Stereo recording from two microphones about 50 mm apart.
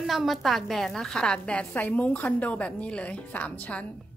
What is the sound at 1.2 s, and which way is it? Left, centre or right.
Speech, centre.